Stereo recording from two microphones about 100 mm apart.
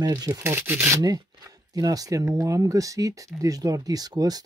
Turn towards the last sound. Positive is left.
turn(degrees=-40)  # may be behind; listen again after turning